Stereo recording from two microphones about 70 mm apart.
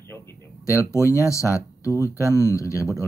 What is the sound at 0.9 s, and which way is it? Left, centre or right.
Speech, left.